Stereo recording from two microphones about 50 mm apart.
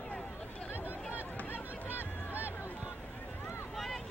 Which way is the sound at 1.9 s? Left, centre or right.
Right.